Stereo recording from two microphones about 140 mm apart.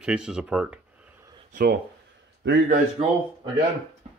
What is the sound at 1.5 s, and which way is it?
Speech, 90° right.